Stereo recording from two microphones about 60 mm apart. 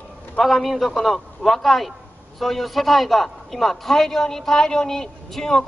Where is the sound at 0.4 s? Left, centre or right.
Centre.